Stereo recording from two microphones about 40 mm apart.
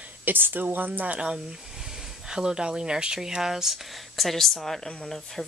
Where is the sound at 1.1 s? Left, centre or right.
Right.